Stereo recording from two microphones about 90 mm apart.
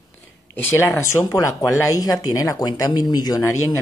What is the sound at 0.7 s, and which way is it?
Speech, 35° left (ahead or behind).